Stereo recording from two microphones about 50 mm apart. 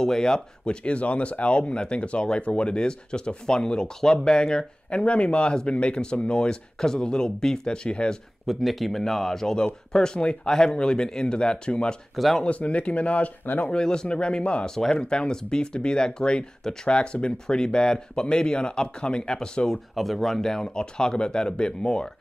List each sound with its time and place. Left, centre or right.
0.0 s speech: centre
8.5 s speech: centre
12.2 s speech: centre
12.4 s speech: left
13.7 s speech: centre
20.0 s speech: centre